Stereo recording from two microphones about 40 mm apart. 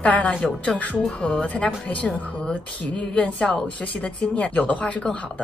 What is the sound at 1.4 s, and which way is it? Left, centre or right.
Speech, left.